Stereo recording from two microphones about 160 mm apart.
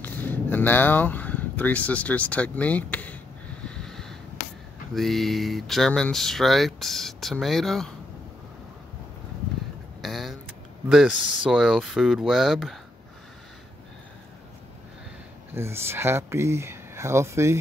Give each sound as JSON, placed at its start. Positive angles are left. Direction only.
{"t": 0.0, "sound": "speech", "side_deg": 10}
{"t": 3.6, "sound": "a sound", "side_deg": 5}
{"t": 4.9, "sound": "speech", "side_deg": 0}
{"t": 10.0, "sound": "vehicle", "side_deg": 0}
{"t": 10.9, "sound": "speech", "side_deg": -5}
{"t": 15.5, "sound": "speech", "side_deg": -15}